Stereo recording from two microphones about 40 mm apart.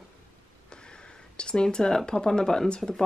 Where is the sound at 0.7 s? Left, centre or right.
Left.